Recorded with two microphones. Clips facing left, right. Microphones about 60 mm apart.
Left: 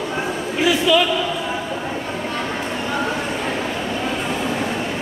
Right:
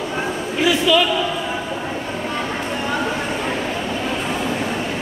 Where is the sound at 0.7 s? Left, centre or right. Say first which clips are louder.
Even; centre.